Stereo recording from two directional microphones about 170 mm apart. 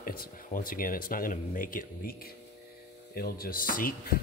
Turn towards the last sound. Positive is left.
turn(degrees=60)  # may be behind; listen again after turning